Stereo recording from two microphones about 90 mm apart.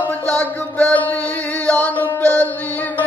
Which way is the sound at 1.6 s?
15° left (ahead or behind).